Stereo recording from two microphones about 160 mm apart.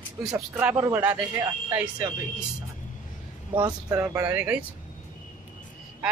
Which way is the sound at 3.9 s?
15° right (ahead or behind).